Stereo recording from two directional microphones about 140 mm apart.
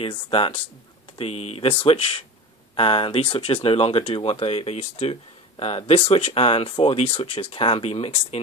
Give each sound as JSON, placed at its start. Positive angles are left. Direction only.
{"t": 0.0, "sound": "speech", "side_deg": 45}